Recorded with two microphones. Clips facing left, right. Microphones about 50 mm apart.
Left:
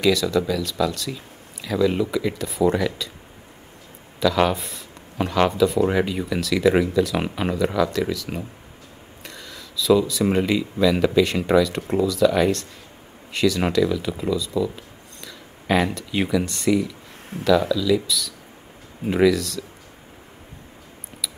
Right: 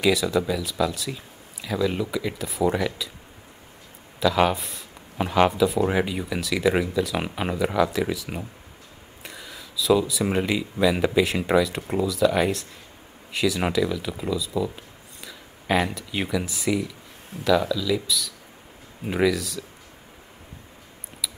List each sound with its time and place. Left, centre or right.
0.0 s speech: centre
4.2 s speech: centre
7.5 s speech: centre